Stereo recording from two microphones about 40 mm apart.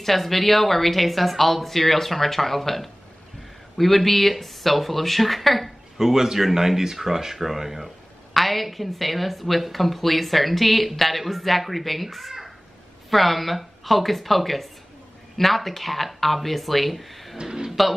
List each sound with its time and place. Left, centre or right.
0.0 s speech: centre
5.9 s speech: centre
17.4 s speech: centre
17.6 s music: centre